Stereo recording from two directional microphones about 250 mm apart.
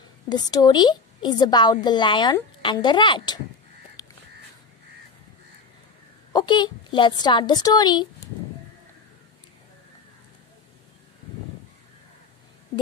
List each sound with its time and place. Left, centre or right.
0.3 s a woman's voice: centre
4.0 s crow: centre
6.3 s a woman's voice: centre